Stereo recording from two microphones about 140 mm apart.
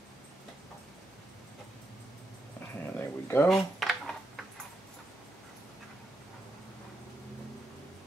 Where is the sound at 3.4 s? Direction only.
Centre (ahead or behind).